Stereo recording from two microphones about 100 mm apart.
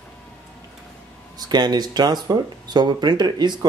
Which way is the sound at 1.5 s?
45° right (ahead or behind).